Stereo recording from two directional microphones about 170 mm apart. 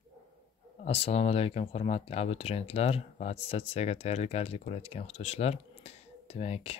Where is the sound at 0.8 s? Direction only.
35° left (ahead or behind).